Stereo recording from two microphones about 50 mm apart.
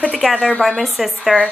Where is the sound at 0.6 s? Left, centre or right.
Centre.